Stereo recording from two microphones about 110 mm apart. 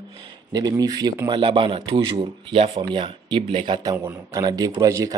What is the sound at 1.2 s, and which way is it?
Speech, 50° right (ahead or behind).